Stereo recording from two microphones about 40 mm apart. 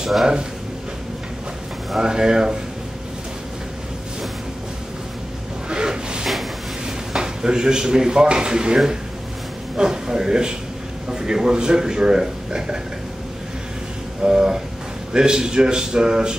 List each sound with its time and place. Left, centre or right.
2.0 s speech: centre
5.7 s a sound: centre
7.2 s speech: centre
14.2 s speech: centre